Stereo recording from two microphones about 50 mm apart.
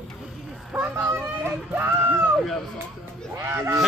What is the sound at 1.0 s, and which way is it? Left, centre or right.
Speech, right.